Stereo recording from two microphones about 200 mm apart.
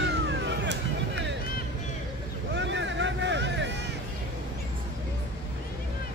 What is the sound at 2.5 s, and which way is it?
Vehicle, 65° right (ahead or behind).